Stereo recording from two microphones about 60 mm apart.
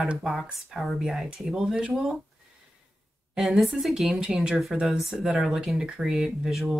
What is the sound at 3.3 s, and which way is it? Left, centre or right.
Speech, centre.